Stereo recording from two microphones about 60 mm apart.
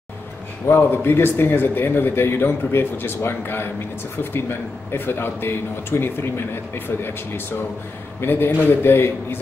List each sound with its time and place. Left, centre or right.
0.7 s a man's voice: left